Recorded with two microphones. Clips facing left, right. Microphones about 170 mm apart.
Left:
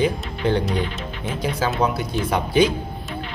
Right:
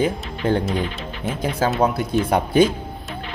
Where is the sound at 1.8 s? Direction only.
55° right (ahead or behind).